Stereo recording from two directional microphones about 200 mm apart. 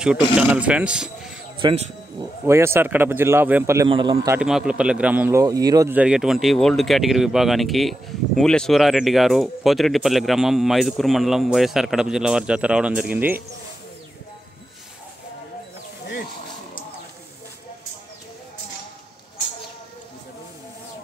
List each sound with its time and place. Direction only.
0.4 s a man's voice: 5° right (ahead or behind)
1.6 s a man's voice: 25° right (ahead or behind)
2.4 s a man's voice: 15° right (ahead or behind)
3.9 s a man's voice: 25° right (ahead or behind)
4.4 s speech: 5° right (ahead or behind)